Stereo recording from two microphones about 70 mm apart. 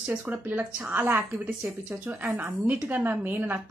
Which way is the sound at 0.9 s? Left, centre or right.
Right.